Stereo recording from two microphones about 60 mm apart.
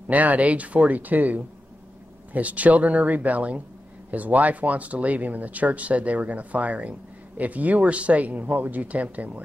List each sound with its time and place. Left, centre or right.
0.1 s speech: right